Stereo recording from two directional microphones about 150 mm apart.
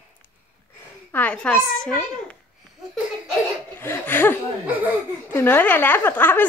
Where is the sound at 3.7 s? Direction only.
15° left (ahead or behind).